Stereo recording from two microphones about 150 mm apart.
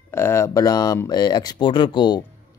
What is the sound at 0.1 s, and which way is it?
Speech, 15° left (ahead or behind).